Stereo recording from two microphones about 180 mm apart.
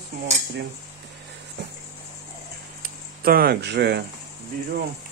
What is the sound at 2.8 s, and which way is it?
Speech, 55° right (ahead or behind).